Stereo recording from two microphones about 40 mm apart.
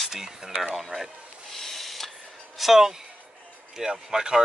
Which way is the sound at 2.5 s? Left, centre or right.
Centre.